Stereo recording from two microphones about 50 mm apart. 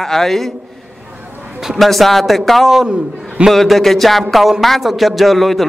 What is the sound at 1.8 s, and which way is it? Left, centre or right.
Speech, centre.